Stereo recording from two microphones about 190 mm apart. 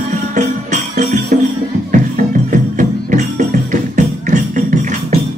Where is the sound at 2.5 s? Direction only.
40° right (ahead or behind).